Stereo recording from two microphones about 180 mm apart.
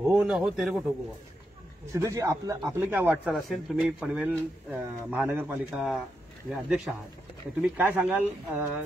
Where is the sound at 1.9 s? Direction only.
15° right (ahead or behind).